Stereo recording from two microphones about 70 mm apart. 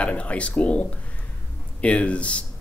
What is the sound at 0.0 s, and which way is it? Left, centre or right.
Speech, centre.